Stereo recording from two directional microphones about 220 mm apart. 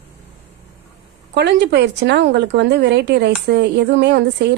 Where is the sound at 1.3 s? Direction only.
50° right (ahead or behind).